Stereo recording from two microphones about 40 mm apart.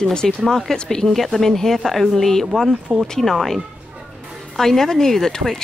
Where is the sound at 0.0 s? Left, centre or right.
Left.